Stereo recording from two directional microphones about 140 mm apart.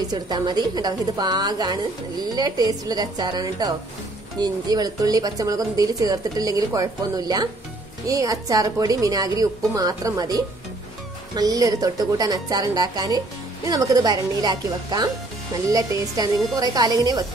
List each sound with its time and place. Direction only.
0.1 s speech: 30° right (ahead or behind)